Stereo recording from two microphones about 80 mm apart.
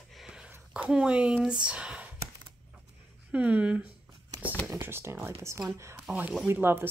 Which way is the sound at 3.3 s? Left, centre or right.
Centre.